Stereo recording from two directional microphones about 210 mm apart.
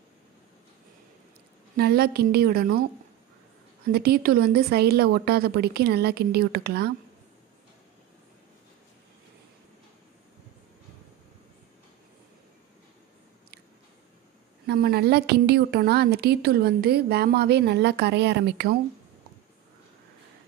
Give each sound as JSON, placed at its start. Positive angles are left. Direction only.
{"t": 1.8, "sound": "a woman's voice", "side_deg": -50}
{"t": 3.9, "sound": "a woman's voice", "side_deg": -50}
{"t": 14.7, "sound": "a woman's voice", "side_deg": -50}